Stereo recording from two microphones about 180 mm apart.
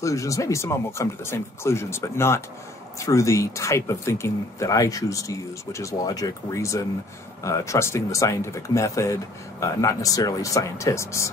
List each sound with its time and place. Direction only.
0.0 s speech: 15° left (ahead or behind)